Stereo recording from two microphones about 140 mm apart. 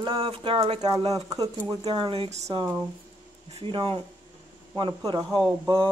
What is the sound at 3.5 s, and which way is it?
A man's voice, 40° right (ahead or behind).